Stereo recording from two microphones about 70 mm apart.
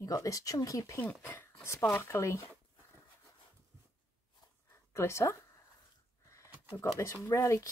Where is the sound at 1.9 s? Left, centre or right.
Left.